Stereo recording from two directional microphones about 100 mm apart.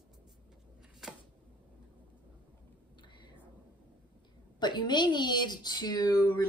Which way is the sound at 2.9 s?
50° left (ahead or behind).